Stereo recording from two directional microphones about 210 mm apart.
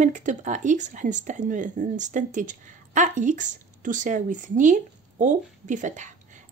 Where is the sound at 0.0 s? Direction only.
35° right (ahead or behind).